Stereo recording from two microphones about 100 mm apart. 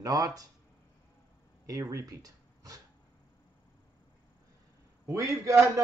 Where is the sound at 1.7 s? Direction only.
30° right (ahead or behind).